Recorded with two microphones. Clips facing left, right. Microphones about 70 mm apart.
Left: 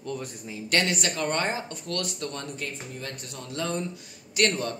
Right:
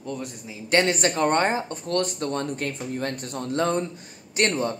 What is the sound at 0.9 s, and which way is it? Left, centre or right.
Speech, right.